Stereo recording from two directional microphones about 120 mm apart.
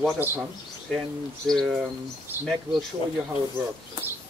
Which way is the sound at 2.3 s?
20° right (ahead or behind).